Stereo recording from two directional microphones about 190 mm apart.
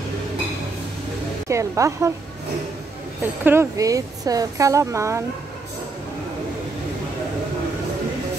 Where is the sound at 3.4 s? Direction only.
15° right (ahead or behind).